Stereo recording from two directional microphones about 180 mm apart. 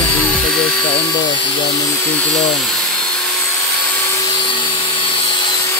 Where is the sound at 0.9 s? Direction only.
25° left (ahead or behind).